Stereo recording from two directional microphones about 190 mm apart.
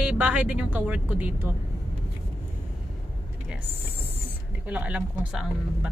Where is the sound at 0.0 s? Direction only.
5° right (ahead or behind).